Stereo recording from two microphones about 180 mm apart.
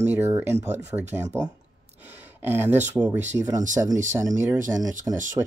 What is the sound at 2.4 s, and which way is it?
Speech, 10° right (ahead or behind).